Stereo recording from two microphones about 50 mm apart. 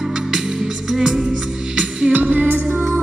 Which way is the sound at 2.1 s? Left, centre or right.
Right.